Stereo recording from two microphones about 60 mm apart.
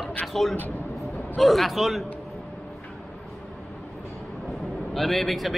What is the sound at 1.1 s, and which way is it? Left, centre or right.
Vehicle, left.